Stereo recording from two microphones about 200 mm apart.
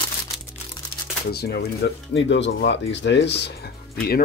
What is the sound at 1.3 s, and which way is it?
Speech, 55° left (ahead or behind).